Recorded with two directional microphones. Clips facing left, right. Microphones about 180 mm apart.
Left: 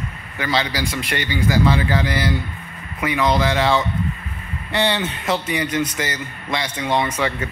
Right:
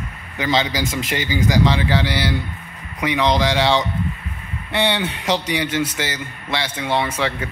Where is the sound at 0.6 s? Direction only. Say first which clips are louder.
Right 2 dB; 20° right (ahead or behind).